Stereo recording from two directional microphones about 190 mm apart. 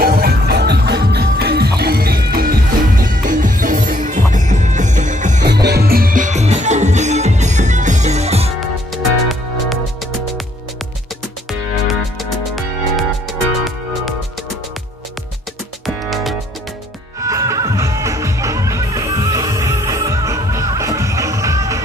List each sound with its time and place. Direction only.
0.0 s music: 55° right (ahead or behind)
5.4 s music: 60° right (ahead or behind); by 8.5 s 35° right (ahead or behind)
8.9 s music: centre (ahead or behind)
11.9 s music: centre (ahead or behind)
15.8 s music: centre (ahead or behind)
17.2 s music: 15° right (ahead or behind)